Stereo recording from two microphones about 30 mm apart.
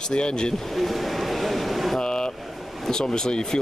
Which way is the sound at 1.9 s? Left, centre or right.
Left.